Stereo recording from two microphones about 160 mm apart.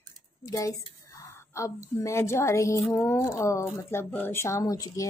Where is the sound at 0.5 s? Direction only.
20° left (ahead or behind).